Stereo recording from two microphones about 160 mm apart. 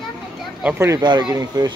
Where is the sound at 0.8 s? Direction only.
25° right (ahead or behind).